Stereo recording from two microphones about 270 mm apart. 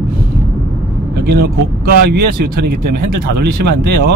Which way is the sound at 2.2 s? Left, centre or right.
Right.